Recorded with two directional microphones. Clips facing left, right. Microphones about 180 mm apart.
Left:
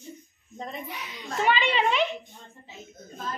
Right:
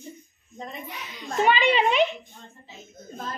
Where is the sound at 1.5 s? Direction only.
15° right (ahead or behind).